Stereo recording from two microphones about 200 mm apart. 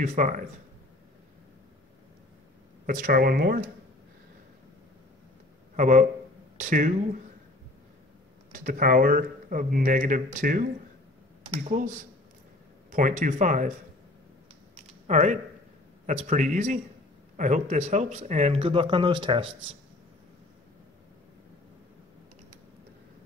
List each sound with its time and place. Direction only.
0.0 s speech: 40° right (ahead or behind)
2.9 s speech: 45° right (ahead or behind)
5.8 s speech: 40° right (ahead or behind)
8.5 s speech: 45° right (ahead or behind)
15.0 s speech: 35° right (ahead or behind)